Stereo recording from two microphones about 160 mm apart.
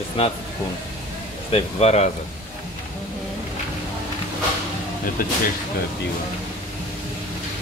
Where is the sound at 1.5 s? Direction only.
40° left (ahead or behind).